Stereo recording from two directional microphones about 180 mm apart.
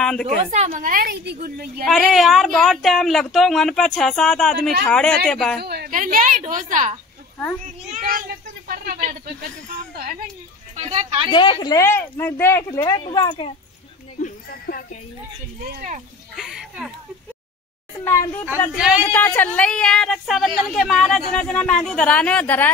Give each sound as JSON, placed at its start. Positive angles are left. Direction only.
{"t": 0.0, "sound": "a woman's voice", "side_deg": 5}
{"t": 0.5, "sound": "a woman's voice", "side_deg": -40}
{"t": 1.9, "sound": "speech", "side_deg": 0}
{"t": 5.6, "sound": "a woman's voice", "side_deg": -60}
{"t": 8.6, "sound": "a sound", "side_deg": -55}
{"t": 10.9, "sound": "speech", "side_deg": -30}
{"t": 11.2, "sound": "speech", "side_deg": 25}
{"t": 14.2, "sound": "speech", "side_deg": 55}
{"t": 15.6, "sound": "a woman's voice", "side_deg": -50}
{"t": 16.3, "sound": "speech", "side_deg": 0}
{"t": 18.0, "sound": "speech", "side_deg": 15}